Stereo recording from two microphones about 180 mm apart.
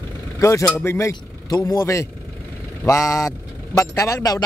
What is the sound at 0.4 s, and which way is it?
Speech, 15° left (ahead or behind).